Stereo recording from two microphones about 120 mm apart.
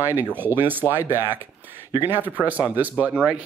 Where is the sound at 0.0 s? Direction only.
15° right (ahead or behind).